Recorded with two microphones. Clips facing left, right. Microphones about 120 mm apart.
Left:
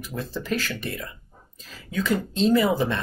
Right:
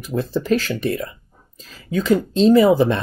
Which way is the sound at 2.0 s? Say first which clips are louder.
Right 7 dB; 25° right (ahead or behind).